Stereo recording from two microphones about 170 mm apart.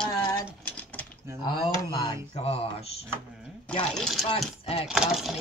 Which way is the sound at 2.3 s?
35° left (ahead or behind).